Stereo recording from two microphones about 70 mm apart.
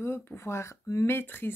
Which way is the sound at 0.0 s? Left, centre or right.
Left.